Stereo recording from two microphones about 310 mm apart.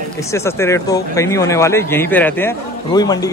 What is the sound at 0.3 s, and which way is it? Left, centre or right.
A man's voice, centre.